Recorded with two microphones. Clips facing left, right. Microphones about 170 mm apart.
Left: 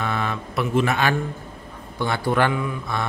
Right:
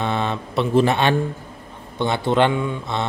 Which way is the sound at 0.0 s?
25° right (ahead or behind).